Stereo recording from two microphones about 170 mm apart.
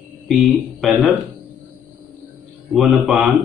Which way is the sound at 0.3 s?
Centre (ahead or behind).